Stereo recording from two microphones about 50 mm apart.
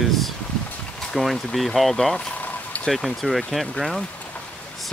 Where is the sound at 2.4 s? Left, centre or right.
Left.